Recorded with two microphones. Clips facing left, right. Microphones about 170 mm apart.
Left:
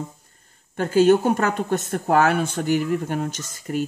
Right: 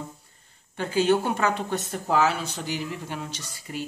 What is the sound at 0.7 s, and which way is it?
Speech, 45° left (ahead or behind).